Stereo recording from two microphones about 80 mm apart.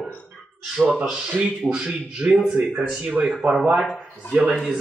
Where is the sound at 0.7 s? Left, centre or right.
Centre.